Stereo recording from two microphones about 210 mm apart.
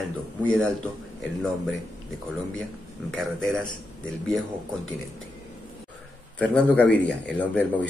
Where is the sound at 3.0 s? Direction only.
Centre (ahead or behind).